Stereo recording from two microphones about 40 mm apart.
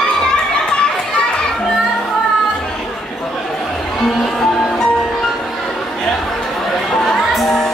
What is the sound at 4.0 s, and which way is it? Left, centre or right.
Music, centre.